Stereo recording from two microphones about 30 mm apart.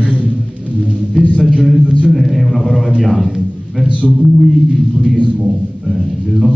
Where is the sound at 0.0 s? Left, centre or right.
Right.